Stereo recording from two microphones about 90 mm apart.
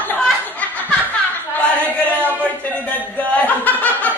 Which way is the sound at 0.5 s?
20° left (ahead or behind).